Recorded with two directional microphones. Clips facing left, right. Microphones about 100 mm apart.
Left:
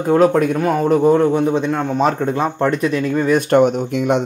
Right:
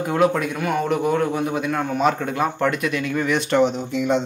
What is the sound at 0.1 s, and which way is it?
A man's voice, 35° left (ahead or behind).